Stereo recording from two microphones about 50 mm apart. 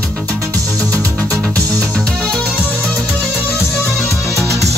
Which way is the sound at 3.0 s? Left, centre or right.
Centre.